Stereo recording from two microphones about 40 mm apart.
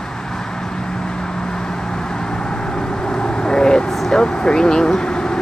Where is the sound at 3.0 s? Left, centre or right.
Left.